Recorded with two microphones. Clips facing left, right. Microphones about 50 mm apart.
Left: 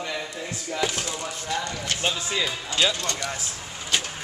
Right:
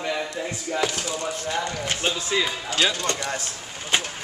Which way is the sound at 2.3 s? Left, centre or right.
Centre.